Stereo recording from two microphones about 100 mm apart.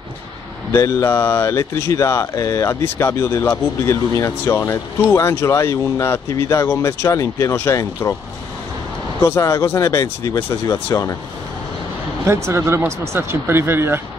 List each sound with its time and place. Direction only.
0.7 s speech: 30° left (ahead or behind)
9.2 s speech: 30° left (ahead or behind)
12.4 s speech: 25° right (ahead or behind)